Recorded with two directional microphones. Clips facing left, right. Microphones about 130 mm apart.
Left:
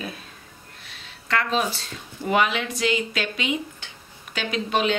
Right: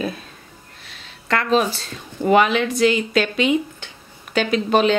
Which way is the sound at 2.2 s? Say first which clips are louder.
Right 7 dB; 50° right (ahead or behind).